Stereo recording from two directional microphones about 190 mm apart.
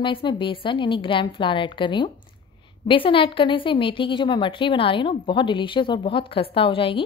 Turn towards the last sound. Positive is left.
turn(degrees=30)  # may be behind; listen again after turning